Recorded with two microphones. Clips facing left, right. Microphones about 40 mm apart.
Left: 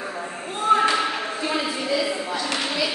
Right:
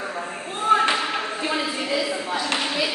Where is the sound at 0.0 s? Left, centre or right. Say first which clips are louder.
Right 1 dB; centre.